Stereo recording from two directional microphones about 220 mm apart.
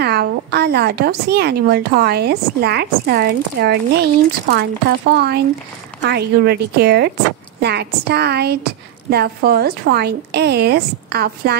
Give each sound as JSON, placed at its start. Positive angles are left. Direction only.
{"t": 0.0, "sound": "speech", "side_deg": -45}